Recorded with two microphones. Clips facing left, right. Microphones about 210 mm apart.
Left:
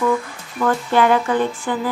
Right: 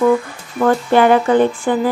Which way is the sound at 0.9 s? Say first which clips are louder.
Right 4 dB; 55° right (ahead or behind).